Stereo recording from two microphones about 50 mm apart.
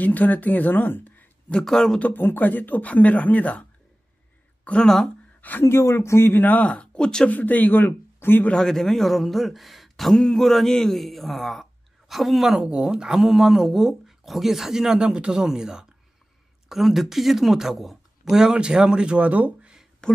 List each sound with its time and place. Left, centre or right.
0.0 s speech: left
1.6 s speech: centre
2.0 s speech: left
4.8 s speech: centre
5.6 s speech: left
6.4 s speech: left; by 7.2 s centre
7.2 s speech: left
8.5 s speech: centre
12.5 s speech: centre
16.6 s speech: centre; by 19.7 s right